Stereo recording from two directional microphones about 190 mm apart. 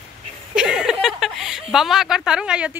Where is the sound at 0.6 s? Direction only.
5° right (ahead or behind).